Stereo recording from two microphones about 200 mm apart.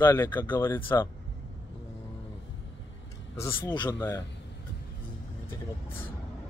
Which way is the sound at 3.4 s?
10° left (ahead or behind).